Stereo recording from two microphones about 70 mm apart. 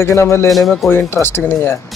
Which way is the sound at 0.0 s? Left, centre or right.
Left.